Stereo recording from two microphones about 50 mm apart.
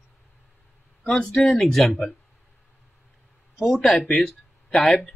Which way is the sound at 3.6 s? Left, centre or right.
Centre.